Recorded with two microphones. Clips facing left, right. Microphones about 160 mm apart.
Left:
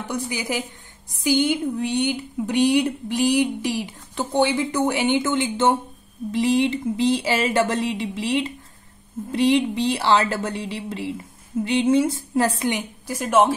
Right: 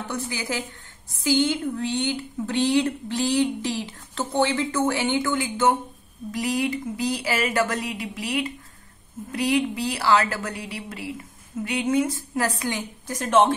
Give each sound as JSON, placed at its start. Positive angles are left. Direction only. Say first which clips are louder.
{"t": 0.1, "sound": "a woman's voice", "louder": "left 4 dB", "side_deg": 15}